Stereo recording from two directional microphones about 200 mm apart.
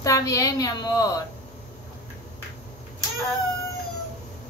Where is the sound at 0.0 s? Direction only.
15° left (ahead or behind).